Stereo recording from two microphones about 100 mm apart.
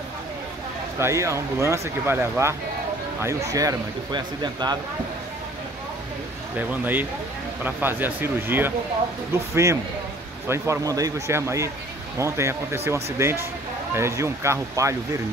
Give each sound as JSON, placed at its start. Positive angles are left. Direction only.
{"t": 0.9, "sound": "speech", "side_deg": -30}
{"t": 4.4, "sound": "speech", "side_deg": -45}
{"t": 6.7, "sound": "speech", "side_deg": -20}